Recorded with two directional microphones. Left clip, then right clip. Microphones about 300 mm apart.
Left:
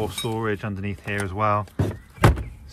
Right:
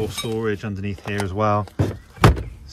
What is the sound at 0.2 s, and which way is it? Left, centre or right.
Speech, centre.